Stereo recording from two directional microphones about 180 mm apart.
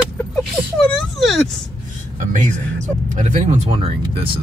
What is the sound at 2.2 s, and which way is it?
Speech, 45° right (ahead or behind).